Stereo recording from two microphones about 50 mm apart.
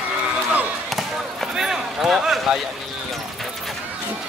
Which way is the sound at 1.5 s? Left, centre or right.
Centre.